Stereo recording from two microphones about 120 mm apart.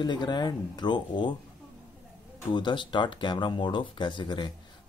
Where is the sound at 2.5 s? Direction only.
40° left (ahead or behind).